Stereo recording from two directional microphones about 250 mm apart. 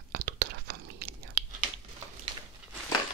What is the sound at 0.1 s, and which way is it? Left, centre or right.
Whispering, right.